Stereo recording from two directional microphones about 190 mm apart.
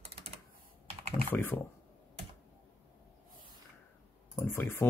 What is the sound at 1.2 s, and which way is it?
Speech, 10° left (ahead or behind).